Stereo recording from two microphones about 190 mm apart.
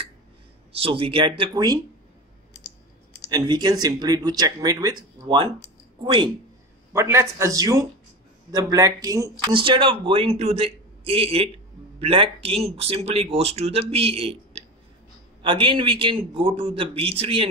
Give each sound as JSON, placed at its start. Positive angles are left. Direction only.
{"t": 0.7, "sound": "speech", "side_deg": -30}
{"t": 3.3, "sound": "speech", "side_deg": -20}
{"t": 6.9, "sound": "a man's voice", "side_deg": -15}